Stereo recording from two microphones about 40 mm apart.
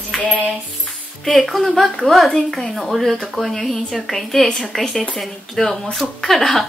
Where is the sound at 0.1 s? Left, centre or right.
Centre.